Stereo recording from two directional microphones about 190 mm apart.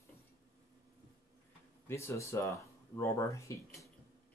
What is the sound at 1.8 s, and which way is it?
Speech, 15° left (ahead or behind).